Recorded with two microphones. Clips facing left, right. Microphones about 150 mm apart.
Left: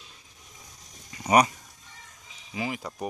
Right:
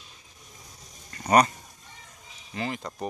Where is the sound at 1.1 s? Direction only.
10° left (ahead or behind).